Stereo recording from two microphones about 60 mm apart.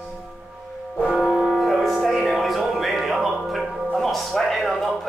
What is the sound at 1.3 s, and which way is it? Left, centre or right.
Music, centre.